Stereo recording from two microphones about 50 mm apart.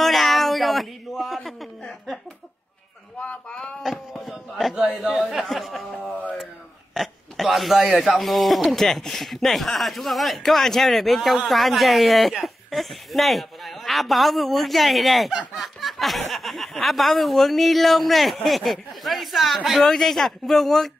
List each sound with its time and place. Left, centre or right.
0.0 s a sound: centre
3.2 s speech: centre
4.1 s a sound: centre
4.7 s speech: right
5.1 s speech: centre
6.9 s speech: centre